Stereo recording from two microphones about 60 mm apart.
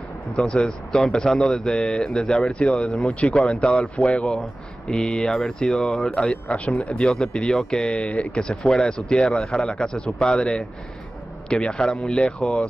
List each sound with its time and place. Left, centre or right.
0.5 s speech: centre
6.1 s speech: centre